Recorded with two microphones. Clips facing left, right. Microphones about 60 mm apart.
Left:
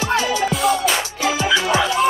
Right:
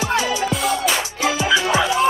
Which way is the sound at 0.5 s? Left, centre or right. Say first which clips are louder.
Left 2 dB; centre.